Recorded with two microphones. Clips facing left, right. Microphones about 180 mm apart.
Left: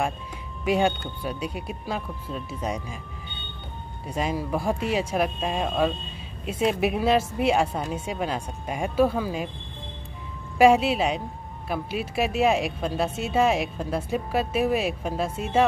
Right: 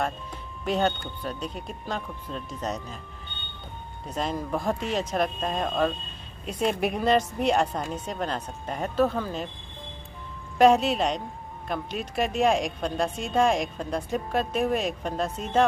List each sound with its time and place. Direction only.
0.7 s speech: 10° left (ahead or behind)
4.0 s speech: 10° left (ahead or behind)
10.6 s speech: 5° left (ahead or behind)